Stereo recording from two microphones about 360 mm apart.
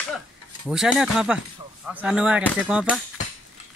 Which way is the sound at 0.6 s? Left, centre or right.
Centre.